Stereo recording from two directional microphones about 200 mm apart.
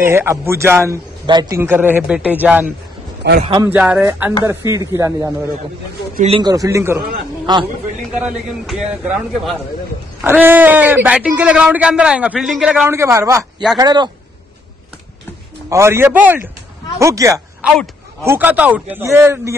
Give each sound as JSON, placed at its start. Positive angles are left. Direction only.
{"t": 0.0, "sound": "speech", "side_deg": -10}
{"t": 3.3, "sound": "a man's voice", "side_deg": -30}
{"t": 3.6, "sound": "speech", "side_deg": -5}
{"t": 6.2, "sound": "a man's voice", "side_deg": -25}
{"t": 6.5, "sound": "a man's voice", "side_deg": -15}
{"t": 8.2, "sound": "a man's voice", "side_deg": -5}
{"t": 15.7, "sound": "speech", "side_deg": -15}